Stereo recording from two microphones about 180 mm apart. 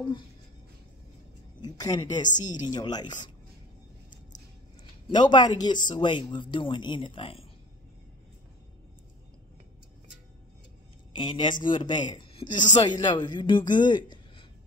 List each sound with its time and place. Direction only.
1.6 s speech: 20° left (ahead or behind)
2.2 s speech: 45° left (ahead or behind)
2.7 s speech: 25° left (ahead or behind)
5.1 s speech: 25° left (ahead or behind)
11.1 s speech: 25° left (ahead or behind)